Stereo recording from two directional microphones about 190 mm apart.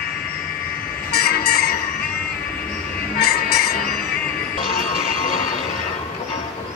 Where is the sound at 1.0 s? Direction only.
55° left (ahead or behind).